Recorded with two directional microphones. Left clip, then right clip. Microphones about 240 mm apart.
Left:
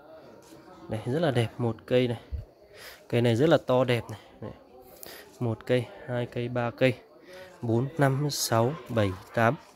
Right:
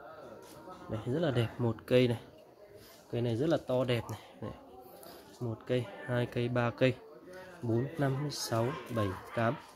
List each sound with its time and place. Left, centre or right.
0.8 s speech: centre
3.1 s speech: left
4.0 s speech: centre
5.4 s speech: left
6.0 s speech: centre
7.7 s speech: left